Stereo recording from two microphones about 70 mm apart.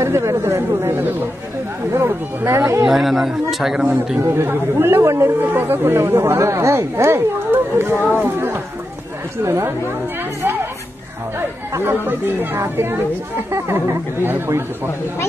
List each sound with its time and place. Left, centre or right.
0.0 s chatter: right
1.9 s speech: right
2.9 s speech: centre
4.2 s speech: right
9.4 s speech: right
10.4 s music: right
11.3 s speech: right